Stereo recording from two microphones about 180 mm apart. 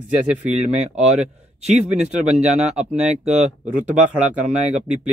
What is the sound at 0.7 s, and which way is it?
Speech, 40° right (ahead or behind).